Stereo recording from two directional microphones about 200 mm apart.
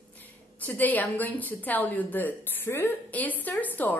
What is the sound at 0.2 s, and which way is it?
A woman's voice, 10° left (ahead or behind).